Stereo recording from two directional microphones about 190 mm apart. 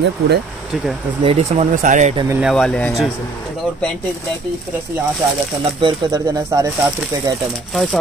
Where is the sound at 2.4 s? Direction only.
Centre (ahead or behind).